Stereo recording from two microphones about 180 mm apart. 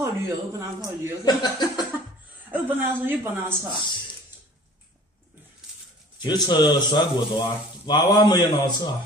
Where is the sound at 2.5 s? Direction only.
10° right (ahead or behind).